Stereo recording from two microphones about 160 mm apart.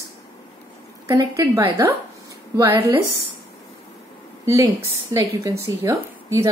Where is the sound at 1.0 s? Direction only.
20° right (ahead or behind).